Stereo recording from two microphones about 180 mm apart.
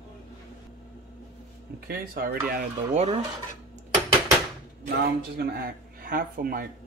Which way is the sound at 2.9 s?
35° right (ahead or behind).